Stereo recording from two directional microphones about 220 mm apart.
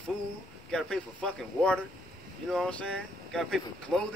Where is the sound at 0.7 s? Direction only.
5° left (ahead or behind).